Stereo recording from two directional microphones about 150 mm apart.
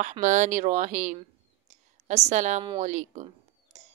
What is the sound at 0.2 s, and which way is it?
Speech, 55° right (ahead or behind).